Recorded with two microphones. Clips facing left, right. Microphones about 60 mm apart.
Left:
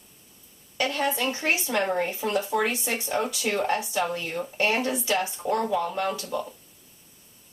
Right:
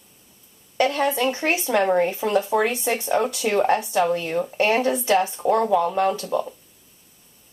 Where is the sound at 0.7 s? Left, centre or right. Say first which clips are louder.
Right 6 dB; right.